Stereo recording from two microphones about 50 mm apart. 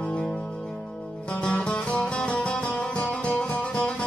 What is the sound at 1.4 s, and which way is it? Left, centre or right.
Music, left.